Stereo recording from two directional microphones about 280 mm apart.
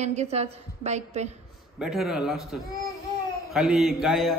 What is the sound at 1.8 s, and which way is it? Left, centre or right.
A man's voice, centre.